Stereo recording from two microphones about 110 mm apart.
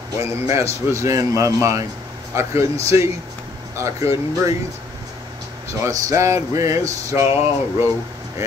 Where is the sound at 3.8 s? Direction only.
30° right (ahead or behind).